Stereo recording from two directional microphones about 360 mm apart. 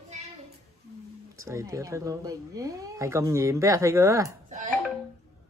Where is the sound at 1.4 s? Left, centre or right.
Centre.